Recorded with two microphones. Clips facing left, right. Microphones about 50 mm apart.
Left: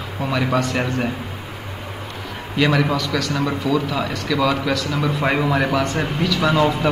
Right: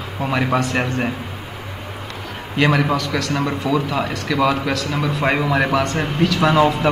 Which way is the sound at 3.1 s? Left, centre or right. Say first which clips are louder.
Even; centre.